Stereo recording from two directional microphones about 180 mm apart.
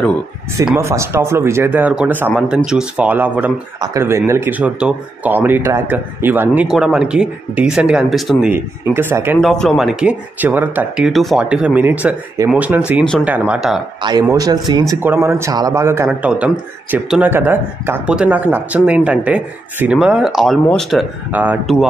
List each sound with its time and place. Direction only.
0.7 s speech: 15° right (ahead or behind)
9.4 s speech: centre (ahead or behind)
14.2 s speech: 20° right (ahead or behind); by 21.1 s 5° left (ahead or behind)
21.3 s speech: 10° right (ahead or behind)